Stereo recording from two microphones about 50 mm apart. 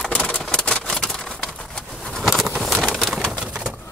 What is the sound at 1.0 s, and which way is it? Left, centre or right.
Pigeon, centre.